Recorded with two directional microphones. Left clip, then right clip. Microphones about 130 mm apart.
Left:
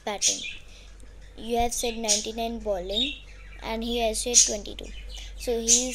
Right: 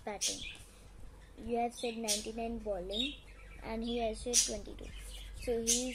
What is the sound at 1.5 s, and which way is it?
A woman's voice, 20° left (ahead or behind).